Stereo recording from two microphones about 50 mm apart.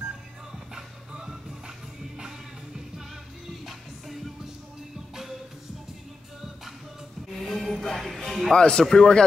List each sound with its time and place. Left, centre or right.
0.5 s music: centre
7.3 s music: centre
7.8 s speech: centre
8.5 s speech: centre